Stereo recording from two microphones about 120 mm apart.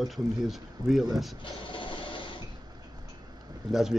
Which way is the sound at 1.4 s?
45° left (ahead or behind).